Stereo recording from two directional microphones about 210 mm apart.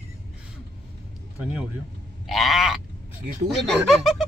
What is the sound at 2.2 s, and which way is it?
A woman's voice, centre (ahead or behind).